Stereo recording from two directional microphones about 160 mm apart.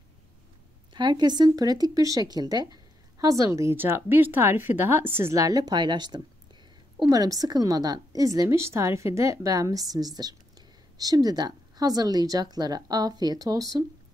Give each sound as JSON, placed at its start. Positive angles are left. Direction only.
{"t": 0.9, "sound": "speech", "side_deg": -25}